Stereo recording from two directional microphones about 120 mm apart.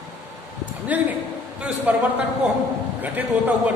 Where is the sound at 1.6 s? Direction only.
10° right (ahead or behind).